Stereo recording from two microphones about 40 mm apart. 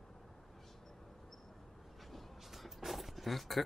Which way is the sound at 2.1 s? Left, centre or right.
Centre.